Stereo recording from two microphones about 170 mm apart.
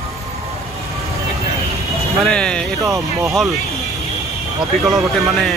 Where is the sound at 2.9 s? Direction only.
20° right (ahead or behind).